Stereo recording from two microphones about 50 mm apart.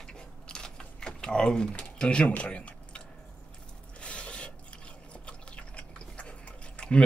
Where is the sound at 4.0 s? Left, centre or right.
Left.